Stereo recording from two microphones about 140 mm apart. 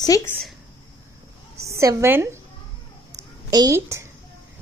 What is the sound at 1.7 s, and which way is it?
Speech, 20° right (ahead or behind).